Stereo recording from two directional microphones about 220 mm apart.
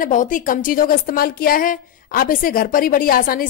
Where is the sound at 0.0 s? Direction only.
35° left (ahead or behind).